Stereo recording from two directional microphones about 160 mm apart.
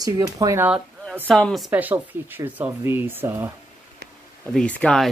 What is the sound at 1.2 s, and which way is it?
Speech, centre (ahead or behind).